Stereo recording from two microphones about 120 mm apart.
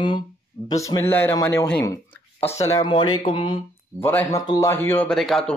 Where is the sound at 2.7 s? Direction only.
40° left (ahead or behind).